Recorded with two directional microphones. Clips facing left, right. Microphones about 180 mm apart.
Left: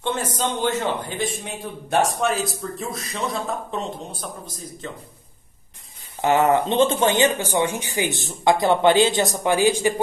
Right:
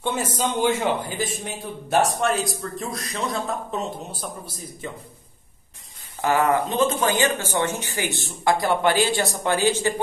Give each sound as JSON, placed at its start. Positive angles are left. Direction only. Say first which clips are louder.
{"t": 0.4, "sound": "a man's voice", "louder": "right 3 dB", "side_deg": -10}
{"t": 6.2, "sound": "speech", "louder": "left 3 dB", "side_deg": 25}